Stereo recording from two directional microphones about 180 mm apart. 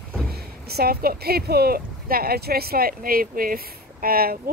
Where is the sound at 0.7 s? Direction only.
60° right (ahead or behind).